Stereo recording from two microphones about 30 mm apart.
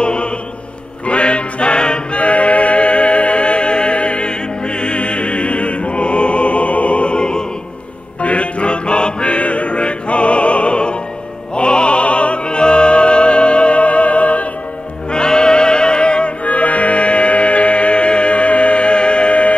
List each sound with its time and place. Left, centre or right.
0.0 s music: left
8.2 s music: left
15.0 s music: left
16.4 s music: left